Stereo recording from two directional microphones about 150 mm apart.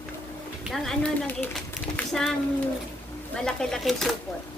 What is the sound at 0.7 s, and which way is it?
Speech, 5° left (ahead or behind).